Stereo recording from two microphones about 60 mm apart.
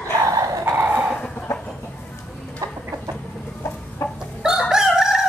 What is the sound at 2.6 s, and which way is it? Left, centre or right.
Chicken, right.